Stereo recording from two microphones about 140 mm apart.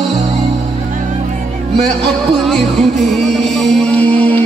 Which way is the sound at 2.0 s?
Centre (ahead or behind).